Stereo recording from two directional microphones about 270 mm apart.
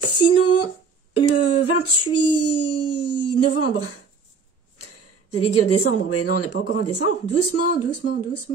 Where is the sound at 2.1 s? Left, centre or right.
Left.